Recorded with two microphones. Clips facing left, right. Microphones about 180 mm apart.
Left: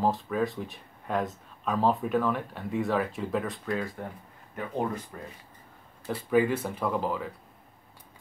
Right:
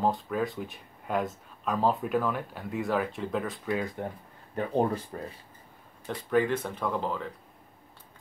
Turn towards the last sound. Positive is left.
turn(degrees=5)  # may be behind; listen again after turning